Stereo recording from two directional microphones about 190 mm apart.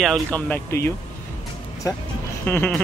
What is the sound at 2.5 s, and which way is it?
Speech, 10° left (ahead or behind).